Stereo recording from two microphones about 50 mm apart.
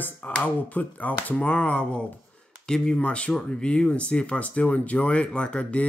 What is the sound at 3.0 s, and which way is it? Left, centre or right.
Speech, left.